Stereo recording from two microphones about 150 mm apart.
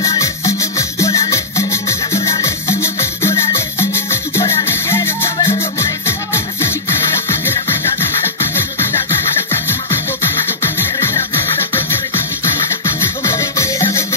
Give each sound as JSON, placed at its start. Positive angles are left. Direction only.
{"t": 0.0, "sound": "music", "side_deg": 20}
{"t": 10.6, "sound": "music", "side_deg": 20}
{"t": 13.2, "sound": "music", "side_deg": 20}